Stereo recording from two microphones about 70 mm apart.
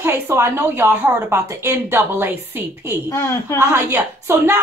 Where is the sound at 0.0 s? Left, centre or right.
Right.